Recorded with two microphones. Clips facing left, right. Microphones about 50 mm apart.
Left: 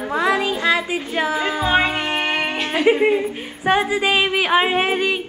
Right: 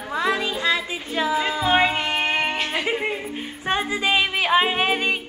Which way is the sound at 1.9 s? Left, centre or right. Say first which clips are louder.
Left 1 dB; left.